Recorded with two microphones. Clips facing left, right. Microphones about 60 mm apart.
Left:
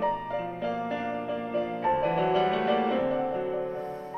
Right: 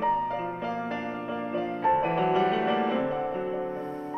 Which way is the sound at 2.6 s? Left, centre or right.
Centre.